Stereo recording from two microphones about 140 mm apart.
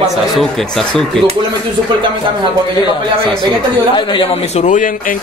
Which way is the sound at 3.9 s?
40° left (ahead or behind).